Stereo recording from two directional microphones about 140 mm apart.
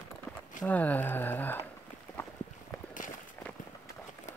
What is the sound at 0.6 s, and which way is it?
Speech, 10° left (ahead or behind).